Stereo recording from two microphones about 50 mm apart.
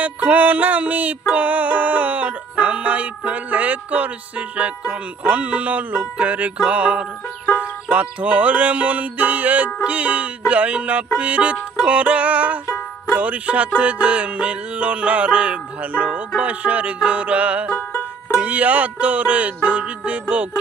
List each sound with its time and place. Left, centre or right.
0.0 s music: right
17.6 s music: left
18.4 s music: right